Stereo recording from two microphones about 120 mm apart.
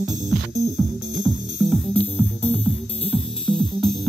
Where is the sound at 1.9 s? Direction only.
10° left (ahead or behind).